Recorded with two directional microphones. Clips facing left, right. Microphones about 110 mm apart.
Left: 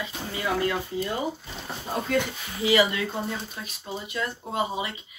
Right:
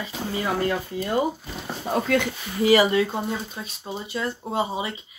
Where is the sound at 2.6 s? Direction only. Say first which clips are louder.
Right 5 dB; 40° right (ahead or behind).